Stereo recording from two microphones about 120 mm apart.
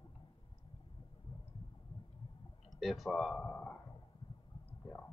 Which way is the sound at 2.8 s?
Centre (ahead or behind).